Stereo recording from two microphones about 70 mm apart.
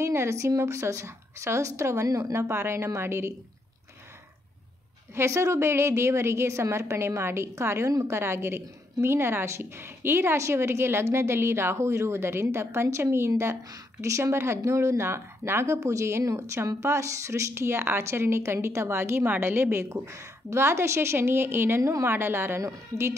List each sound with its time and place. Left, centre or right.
0.0 s a woman's voice: right
5.1 s speech: right
22.6 s a woman's voice: right